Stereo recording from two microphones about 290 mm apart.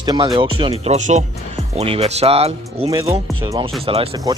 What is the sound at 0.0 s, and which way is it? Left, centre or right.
Speech, centre.